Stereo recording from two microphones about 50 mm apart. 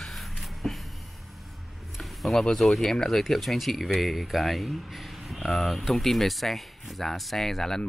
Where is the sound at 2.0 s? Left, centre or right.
Centre.